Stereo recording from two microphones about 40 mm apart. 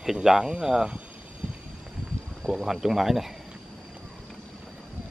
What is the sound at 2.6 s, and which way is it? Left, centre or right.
Speech, centre.